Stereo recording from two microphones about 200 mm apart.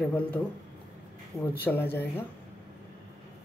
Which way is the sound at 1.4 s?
10° left (ahead or behind).